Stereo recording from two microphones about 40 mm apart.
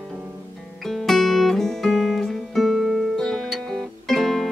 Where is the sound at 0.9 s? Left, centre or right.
Centre.